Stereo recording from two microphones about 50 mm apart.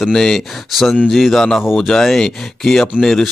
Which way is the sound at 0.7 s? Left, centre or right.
Centre.